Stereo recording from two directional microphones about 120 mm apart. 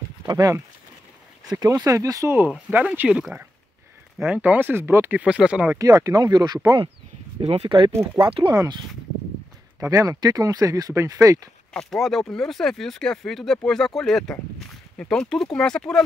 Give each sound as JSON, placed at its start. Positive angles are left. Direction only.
{"t": 0.3, "sound": "speech", "side_deg": -30}
{"t": 5.2, "sound": "speech", "side_deg": -5}
{"t": 5.8, "sound": "speech", "side_deg": -30}
{"t": 7.4, "sound": "speech", "side_deg": -60}
{"t": 8.2, "sound": "speech", "side_deg": -30}
{"t": 9.8, "sound": "speech", "side_deg": -30}
{"t": 11.7, "sound": "speech", "side_deg": 0}